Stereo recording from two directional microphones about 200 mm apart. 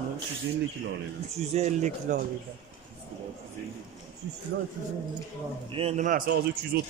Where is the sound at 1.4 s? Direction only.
35° right (ahead or behind).